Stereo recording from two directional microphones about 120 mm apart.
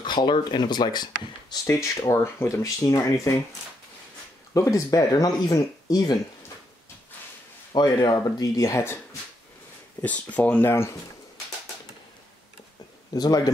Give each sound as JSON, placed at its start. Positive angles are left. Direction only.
{"t": 0.0, "sound": "speech", "side_deg": 40}
{"t": 1.5, "sound": "speech", "side_deg": 25}
{"t": 4.6, "sound": "speech", "side_deg": 30}
{"t": 7.7, "sound": "speech", "side_deg": 35}
{"t": 10.0, "sound": "speech", "side_deg": 10}
{"t": 13.1, "sound": "speech", "side_deg": 30}